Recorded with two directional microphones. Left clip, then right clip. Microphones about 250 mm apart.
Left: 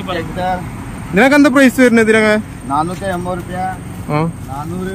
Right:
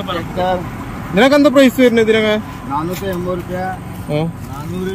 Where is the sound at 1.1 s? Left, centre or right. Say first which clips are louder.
Even; centre.